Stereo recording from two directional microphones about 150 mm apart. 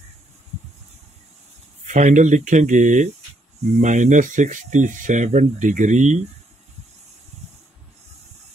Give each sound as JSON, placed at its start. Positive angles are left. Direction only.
{"t": 1.9, "sound": "speech", "side_deg": -55}